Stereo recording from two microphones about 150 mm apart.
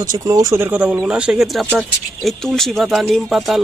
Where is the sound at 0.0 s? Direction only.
25° right (ahead or behind).